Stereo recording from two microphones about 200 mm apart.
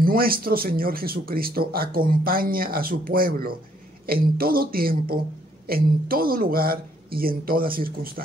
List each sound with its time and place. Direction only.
0.0 s speech: 45° right (ahead or behind)